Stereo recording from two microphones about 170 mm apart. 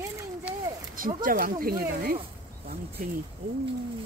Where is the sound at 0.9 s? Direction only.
55° right (ahead or behind).